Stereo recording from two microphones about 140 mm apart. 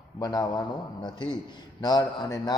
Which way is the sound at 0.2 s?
30° left (ahead or behind).